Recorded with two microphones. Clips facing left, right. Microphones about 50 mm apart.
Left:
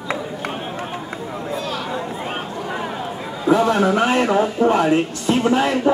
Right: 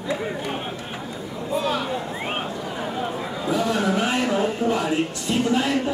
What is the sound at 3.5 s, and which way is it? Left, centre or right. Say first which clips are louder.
Speech: left 7 dB; left.